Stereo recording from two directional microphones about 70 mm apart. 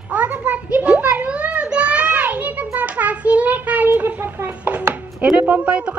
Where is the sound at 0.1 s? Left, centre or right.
Right.